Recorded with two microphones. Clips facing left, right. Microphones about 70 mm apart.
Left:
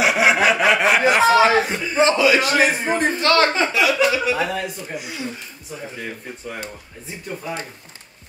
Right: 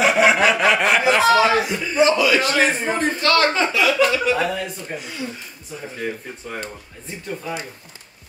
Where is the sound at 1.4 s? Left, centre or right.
Left; by 5.2 s centre.